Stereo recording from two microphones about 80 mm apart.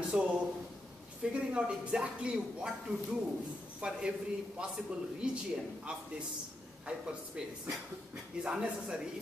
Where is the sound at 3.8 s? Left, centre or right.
Centre.